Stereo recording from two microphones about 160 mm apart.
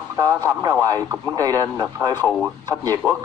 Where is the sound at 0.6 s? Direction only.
25° right (ahead or behind).